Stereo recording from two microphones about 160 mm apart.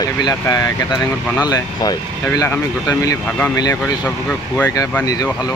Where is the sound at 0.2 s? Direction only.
20° left (ahead or behind).